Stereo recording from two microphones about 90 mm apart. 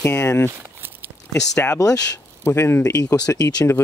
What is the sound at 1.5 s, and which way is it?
Speech, 35° left (ahead or behind).